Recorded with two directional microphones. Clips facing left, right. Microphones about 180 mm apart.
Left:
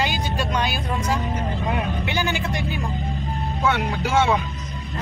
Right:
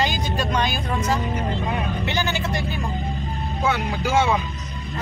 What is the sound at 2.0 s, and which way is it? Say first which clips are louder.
Speech: even; 10° left (ahead or behind).